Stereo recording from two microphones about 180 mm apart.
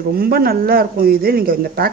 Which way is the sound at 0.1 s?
55° right (ahead or behind).